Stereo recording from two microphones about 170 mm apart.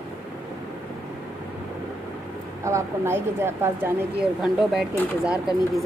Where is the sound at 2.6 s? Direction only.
15° right (ahead or behind).